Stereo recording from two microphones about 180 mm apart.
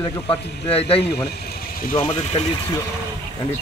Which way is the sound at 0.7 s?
30° left (ahead or behind).